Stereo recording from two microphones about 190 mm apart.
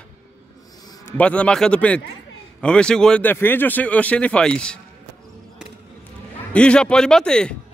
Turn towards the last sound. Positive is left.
turn(degrees=5)  # may be behind; listen again after turning